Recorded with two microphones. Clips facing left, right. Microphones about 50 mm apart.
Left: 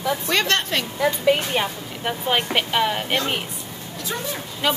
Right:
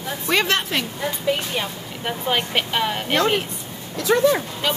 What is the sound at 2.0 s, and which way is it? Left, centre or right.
Speech, centre.